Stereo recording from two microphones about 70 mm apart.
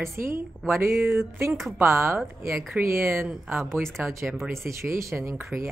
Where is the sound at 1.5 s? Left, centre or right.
Centre.